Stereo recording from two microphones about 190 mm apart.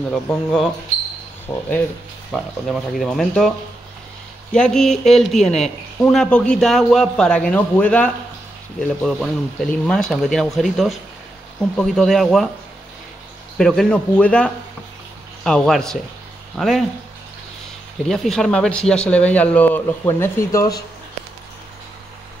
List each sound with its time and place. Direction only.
0.1 s speech: 5° left (ahead or behind)
1.5 s speech: 20° left (ahead or behind)
2.3 s speech: centre (ahead or behind)
13.6 s speech: centre (ahead or behind)
18.0 s speech: centre (ahead or behind)